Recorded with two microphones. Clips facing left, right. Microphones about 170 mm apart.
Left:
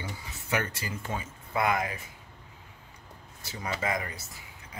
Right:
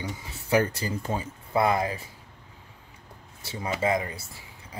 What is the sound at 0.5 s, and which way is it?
Speech, 35° right (ahead or behind).